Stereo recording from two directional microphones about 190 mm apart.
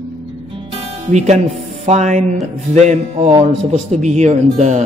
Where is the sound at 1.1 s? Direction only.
35° right (ahead or behind).